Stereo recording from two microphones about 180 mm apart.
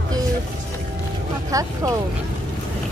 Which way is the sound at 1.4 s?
20° right (ahead or behind).